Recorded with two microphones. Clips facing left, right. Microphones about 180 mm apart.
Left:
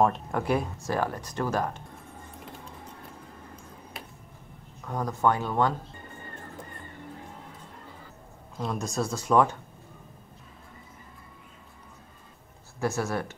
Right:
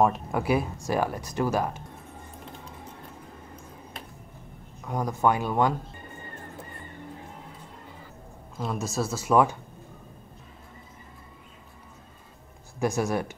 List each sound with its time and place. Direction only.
0.0 s speech: 5° right (ahead or behind)
4.8 s speech: 10° right (ahead or behind)
8.5 s speech: 5° right (ahead or behind)
12.7 s speech: 15° right (ahead or behind)